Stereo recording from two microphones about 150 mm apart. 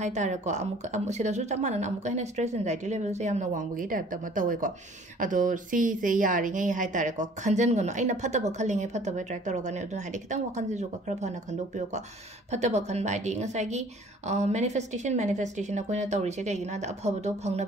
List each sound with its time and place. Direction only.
0.0 s a woman's voice: 50° right (ahead or behind)